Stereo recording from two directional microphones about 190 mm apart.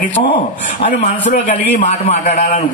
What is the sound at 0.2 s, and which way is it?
A man's voice, 30° left (ahead or behind).